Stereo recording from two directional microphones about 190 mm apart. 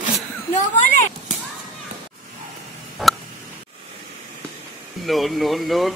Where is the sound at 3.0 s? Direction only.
Centre (ahead or behind).